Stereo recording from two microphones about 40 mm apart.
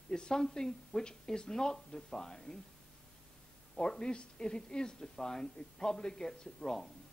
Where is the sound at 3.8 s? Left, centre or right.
Left.